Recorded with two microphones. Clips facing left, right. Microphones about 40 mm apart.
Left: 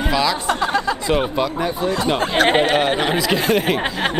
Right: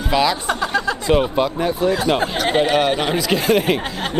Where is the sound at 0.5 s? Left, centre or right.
Centre.